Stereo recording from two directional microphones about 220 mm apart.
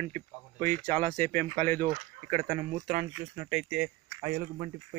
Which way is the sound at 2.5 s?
25° right (ahead or behind).